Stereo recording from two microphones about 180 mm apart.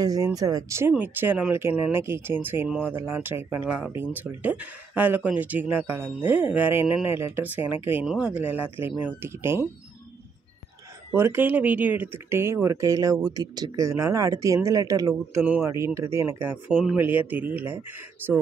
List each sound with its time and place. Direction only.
0.0 s speech: 20° right (ahead or behind)
8.7 s speech: 30° left (ahead or behind)
9.0 s speech: 15° right (ahead or behind)
11.1 s speech: 10° right (ahead or behind)